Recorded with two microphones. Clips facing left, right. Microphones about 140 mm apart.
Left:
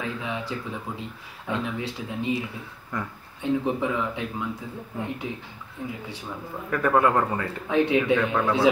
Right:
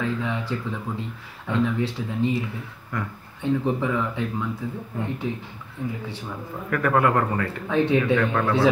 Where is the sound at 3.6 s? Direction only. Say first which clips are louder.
Right 2 dB; 20° left (ahead or behind).